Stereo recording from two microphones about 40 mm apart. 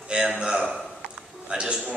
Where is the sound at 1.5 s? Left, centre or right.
Right.